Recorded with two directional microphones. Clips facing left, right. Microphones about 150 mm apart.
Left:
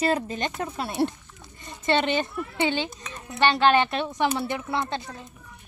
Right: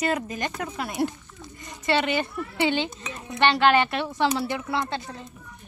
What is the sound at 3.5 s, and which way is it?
Speech, 20° left (ahead or behind).